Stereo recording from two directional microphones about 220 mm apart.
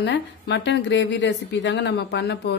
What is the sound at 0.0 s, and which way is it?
A woman's voice, 55° left (ahead or behind).